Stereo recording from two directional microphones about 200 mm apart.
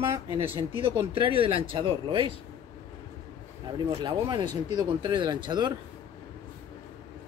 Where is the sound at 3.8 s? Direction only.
20° right (ahead or behind).